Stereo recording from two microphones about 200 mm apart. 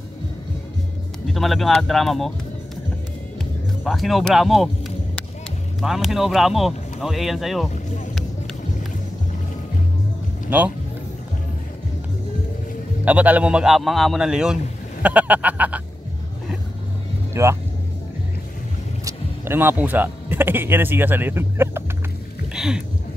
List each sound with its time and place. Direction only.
1.3 s speech: centre (ahead or behind)
3.8 s speech: centre (ahead or behind)
7.7 s speech: 35° left (ahead or behind)
10.5 s duck: 5° right (ahead or behind)
13.0 s speech: 5° right (ahead or behind)
15.0 s duck: 5° right (ahead or behind)
17.3 s vehicle: 15° right (ahead or behind)
19.0 s speech: 10° right (ahead or behind)
22.5 s a sound: 5° right (ahead or behind)